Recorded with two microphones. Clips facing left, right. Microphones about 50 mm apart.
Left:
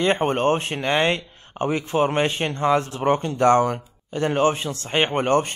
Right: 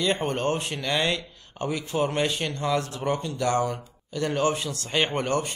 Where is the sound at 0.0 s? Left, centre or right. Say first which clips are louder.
Left 5 dB; left.